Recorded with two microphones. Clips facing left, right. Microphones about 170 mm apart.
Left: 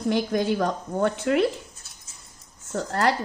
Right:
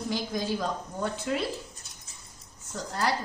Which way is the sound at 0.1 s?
65° left (ahead or behind).